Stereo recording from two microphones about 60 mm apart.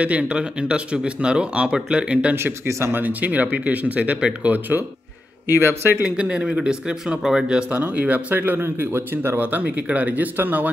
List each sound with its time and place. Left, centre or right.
0.0 s speech: right
2.3 s speech: right
3.0 s speech: right
5.6 s speech: right
6.0 s speech: centre
7.7 s speech: right